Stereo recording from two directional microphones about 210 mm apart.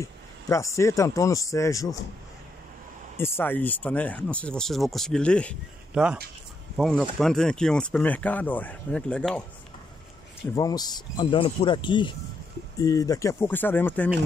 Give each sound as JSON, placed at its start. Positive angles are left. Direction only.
{"t": 0.0, "sound": "speech", "side_deg": 15}
{"t": 3.2, "sound": "speech", "side_deg": 10}
{"t": 10.5, "sound": "speech", "side_deg": 20}